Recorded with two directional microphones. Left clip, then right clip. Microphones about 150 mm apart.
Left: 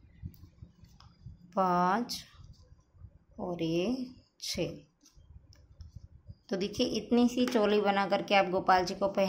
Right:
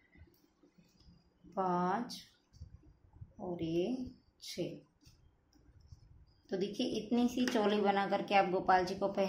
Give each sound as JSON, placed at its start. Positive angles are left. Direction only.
{"t": 1.5, "sound": "speech", "side_deg": 40}
{"t": 3.3, "sound": "speech", "side_deg": 40}
{"t": 6.4, "sound": "speech", "side_deg": 40}